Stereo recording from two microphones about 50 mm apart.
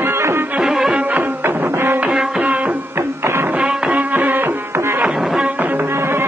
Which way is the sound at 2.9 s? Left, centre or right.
Right.